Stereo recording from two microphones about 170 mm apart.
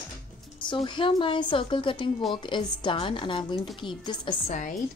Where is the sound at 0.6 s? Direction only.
30° left (ahead or behind).